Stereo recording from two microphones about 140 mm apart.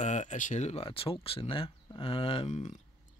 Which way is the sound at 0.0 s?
55° left (ahead or behind).